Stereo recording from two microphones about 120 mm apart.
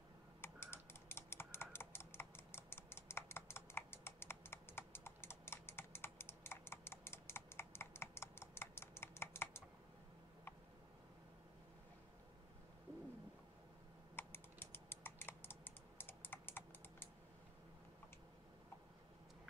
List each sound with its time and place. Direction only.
0.4 s typing: 20° left (ahead or behind)
14.1 s typing: 20° left (ahead or behind)